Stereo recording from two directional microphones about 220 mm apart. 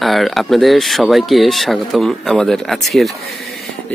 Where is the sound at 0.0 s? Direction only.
Centre (ahead or behind).